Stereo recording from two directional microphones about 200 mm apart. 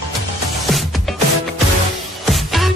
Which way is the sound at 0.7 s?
Centre (ahead or behind).